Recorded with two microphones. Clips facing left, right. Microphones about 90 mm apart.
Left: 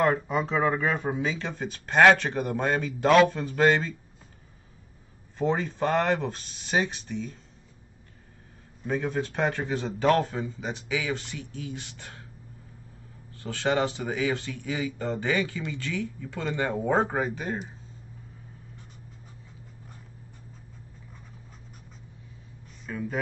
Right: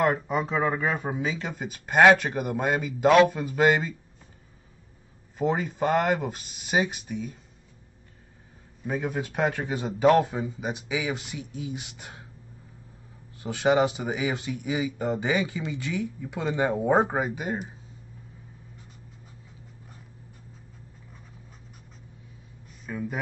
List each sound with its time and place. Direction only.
0.0 s speech: centre (ahead or behind)
5.4 s speech: 5° right (ahead or behind)
8.8 s speech: 10° right (ahead or behind)
13.4 s speech: 15° right (ahead or behind)
22.8 s speech: 10° right (ahead or behind)